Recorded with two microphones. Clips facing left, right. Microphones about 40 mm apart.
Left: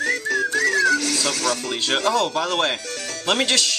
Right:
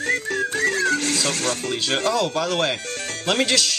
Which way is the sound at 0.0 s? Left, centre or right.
Right.